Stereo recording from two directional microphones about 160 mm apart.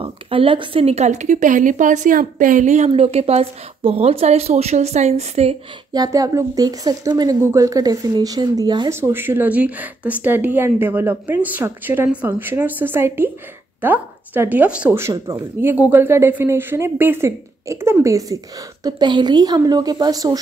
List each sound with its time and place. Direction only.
0.0 s speech: 35° right (ahead or behind)
5.9 s a woman's voice: 20° right (ahead or behind)